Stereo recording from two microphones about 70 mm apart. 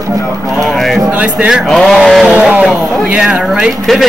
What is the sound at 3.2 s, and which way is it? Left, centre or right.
Speech, centre.